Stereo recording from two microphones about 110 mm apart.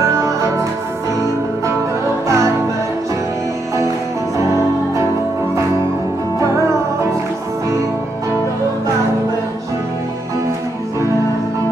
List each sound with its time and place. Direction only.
2.2 s music: 30° right (ahead or behind)
4.4 s music: 30° right (ahead or behind)